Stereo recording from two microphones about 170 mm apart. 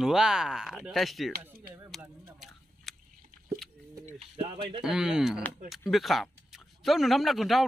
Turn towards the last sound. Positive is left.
turn(degrees=0)  # may be behind; listen again after turning